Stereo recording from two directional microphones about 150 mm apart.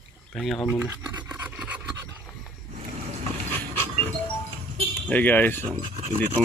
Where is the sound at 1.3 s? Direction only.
10° right (ahead or behind).